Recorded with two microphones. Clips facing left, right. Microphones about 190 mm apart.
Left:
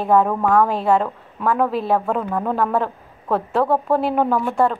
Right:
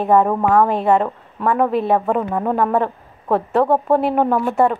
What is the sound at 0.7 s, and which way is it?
A woman's voice, centre (ahead or behind).